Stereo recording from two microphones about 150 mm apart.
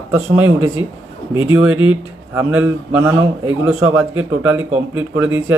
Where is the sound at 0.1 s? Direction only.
15° right (ahead or behind).